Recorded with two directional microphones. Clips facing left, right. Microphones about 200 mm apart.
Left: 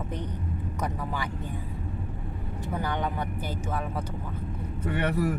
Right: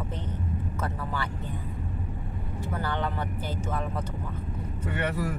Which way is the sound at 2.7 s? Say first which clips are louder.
Left 1 dB; 15° left (ahead or behind).